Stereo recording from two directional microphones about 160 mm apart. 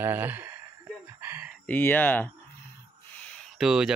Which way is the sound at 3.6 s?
5° right (ahead or behind).